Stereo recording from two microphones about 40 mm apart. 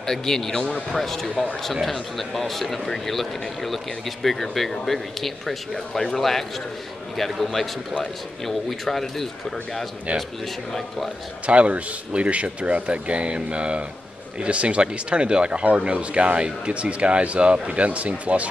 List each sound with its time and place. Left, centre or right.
0.0 s speech: centre
11.4 s speech: right